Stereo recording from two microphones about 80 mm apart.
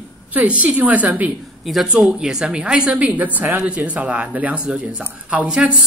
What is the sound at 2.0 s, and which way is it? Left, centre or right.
A woman's voice, centre.